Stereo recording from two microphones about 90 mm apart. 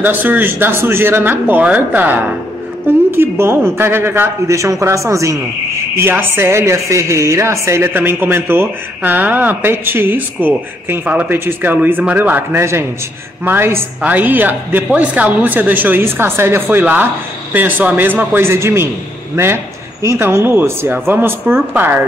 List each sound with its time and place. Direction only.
0.0 s a woman's voice: 20° right (ahead or behind); by 5.4 s 35° right (ahead or behind)
5.9 s a woman's voice: 25° right (ahead or behind)